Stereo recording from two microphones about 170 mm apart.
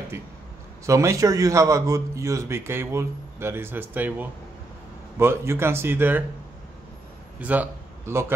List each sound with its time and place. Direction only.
0.8 s a man's voice: 20° right (ahead or behind)
7.3 s speech: 10° right (ahead or behind)